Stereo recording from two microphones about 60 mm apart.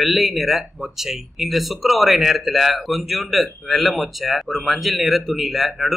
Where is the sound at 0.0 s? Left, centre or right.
Centre.